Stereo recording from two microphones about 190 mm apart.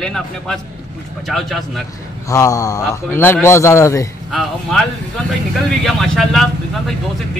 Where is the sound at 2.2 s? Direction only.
15° left (ahead or behind).